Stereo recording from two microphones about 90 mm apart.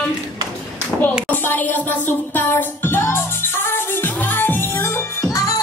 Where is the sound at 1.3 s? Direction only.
20° left (ahead or behind).